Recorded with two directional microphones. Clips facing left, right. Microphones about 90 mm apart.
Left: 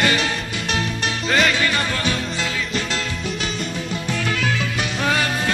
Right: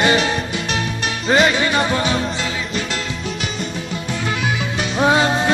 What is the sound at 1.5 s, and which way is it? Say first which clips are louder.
Music: right 4 dB; 20° right (ahead or behind).